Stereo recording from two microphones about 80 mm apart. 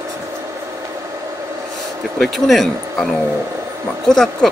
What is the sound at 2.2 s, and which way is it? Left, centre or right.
Speech, centre.